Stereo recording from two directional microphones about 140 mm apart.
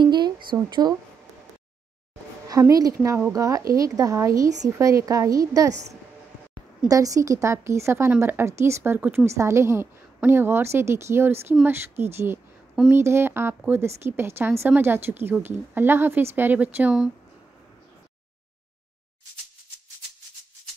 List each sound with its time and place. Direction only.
0.0 s a sound: 30° right (ahead or behind)
0.6 s speech: 30° right (ahead or behind)
2.4 s a woman's voice: 25° right (ahead or behind); by 17.1 s 10° right (ahead or behind)